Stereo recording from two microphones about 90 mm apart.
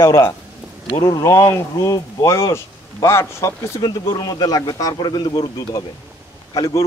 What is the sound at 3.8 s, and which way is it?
A man's voice, 50° left (ahead or behind).